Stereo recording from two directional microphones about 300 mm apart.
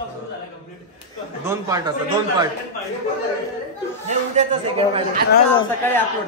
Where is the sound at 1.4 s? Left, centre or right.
Centre.